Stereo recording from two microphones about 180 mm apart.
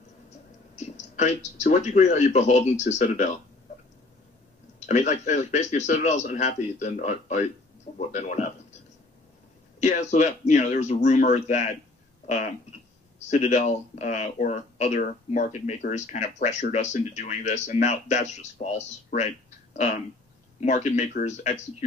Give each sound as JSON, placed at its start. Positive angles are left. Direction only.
{"t": 0.7, "sound": "speech", "side_deg": 40}
{"t": 4.7, "sound": "speech", "side_deg": 40}
{"t": 9.8, "sound": "speech", "side_deg": 40}
{"t": 13.3, "sound": "speech", "side_deg": 40}
{"t": 20.6, "sound": "speech", "side_deg": 40}